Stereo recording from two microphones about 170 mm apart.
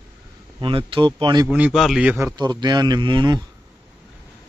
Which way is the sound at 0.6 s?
30° right (ahead or behind).